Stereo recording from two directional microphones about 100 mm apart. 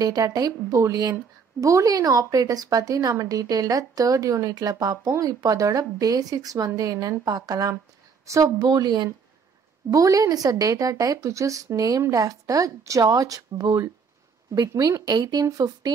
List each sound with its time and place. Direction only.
0.0 s a woman's voice: 40° right (ahead or behind)